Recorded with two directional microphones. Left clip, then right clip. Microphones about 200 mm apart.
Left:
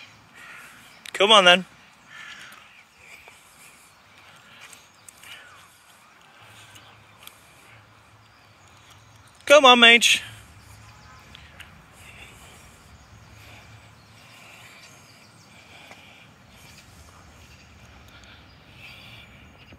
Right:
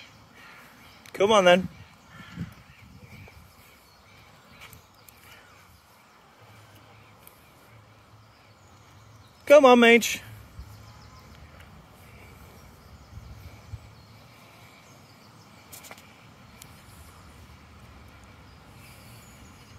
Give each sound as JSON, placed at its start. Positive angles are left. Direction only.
{"t": 1.0, "sound": "speech", "side_deg": -5}
{"t": 9.4, "sound": "speech", "side_deg": -10}